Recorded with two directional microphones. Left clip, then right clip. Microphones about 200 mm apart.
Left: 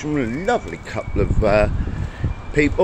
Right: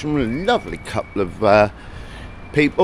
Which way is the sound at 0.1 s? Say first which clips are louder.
Right 2 dB; 35° right (ahead or behind).